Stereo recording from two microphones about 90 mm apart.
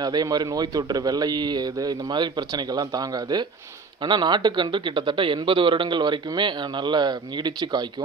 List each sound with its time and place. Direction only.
0.0 s a man's voice: 50° right (ahead or behind)